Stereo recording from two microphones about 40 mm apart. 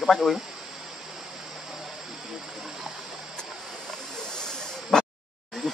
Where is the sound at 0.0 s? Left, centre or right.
Centre.